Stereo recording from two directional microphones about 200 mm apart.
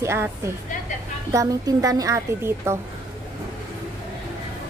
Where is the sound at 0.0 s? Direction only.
15° right (ahead or behind).